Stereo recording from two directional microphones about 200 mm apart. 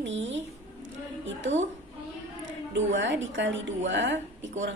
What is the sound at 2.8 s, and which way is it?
A woman's voice, 65° right (ahead or behind).